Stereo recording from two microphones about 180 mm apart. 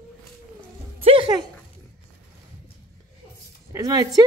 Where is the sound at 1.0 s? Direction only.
30° right (ahead or behind).